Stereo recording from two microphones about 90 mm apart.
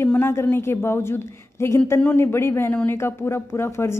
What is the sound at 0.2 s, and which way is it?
A woman's voice, 30° left (ahead or behind).